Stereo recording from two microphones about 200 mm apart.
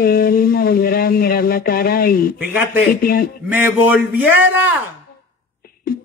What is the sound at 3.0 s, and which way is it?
Speech, 45° left (ahead or behind).